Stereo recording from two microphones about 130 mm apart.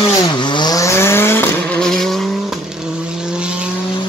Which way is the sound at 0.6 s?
25° left (ahead or behind).